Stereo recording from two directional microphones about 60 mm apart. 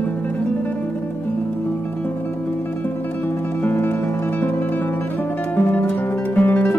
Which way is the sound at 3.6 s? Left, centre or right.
Left.